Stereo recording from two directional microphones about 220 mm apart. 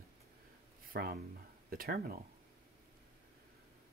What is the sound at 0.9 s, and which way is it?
Speech, 40° right (ahead or behind).